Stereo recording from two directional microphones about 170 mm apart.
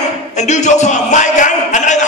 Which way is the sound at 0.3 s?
45° left (ahead or behind).